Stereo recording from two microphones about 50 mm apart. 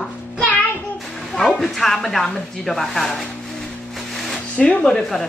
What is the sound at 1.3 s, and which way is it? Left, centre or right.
Speech, centre.